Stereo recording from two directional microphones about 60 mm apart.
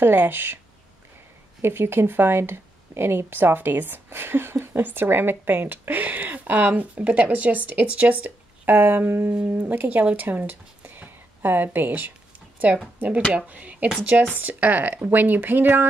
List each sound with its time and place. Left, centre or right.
0.0 s speech: right
1.6 s speech: right
13.5 s speech: right